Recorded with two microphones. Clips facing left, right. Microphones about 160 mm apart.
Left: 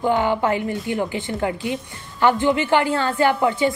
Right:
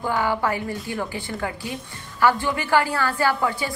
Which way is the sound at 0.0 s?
20° left (ahead or behind).